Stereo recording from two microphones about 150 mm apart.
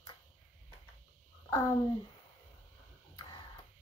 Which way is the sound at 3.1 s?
25° left (ahead or behind).